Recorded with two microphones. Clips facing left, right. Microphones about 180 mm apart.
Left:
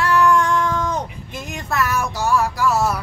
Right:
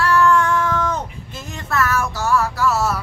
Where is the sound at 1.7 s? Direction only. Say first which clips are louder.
Right 1 dB; 15° left (ahead or behind).